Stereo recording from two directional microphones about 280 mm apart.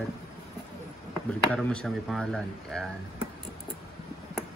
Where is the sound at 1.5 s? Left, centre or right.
Centre.